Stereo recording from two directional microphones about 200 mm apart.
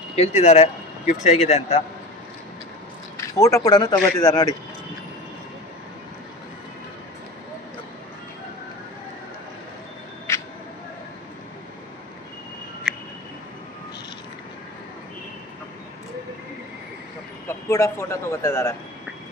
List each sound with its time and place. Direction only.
0.1 s speech: 30° left (ahead or behind)
3.3 s speech: 15° left (ahead or behind)
10.3 s a sound: 15° left (ahead or behind)
17.5 s speech: 15° left (ahead or behind)